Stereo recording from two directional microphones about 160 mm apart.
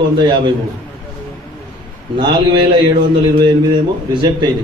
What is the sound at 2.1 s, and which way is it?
Speech, 30° right (ahead or behind).